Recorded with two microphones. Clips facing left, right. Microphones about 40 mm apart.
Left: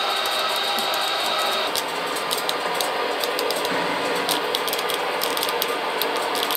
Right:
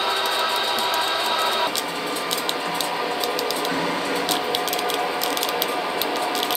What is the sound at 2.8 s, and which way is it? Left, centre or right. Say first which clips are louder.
Music: left 1 dB; centre.